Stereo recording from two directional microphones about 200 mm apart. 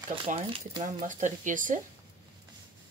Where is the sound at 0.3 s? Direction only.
40° right (ahead or behind).